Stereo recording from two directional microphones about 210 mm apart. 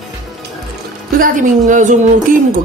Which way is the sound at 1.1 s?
40° right (ahead or behind).